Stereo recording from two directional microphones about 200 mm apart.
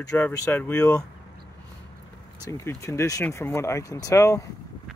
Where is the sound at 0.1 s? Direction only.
10° left (ahead or behind).